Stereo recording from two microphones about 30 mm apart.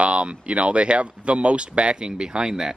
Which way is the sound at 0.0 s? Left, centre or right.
Right.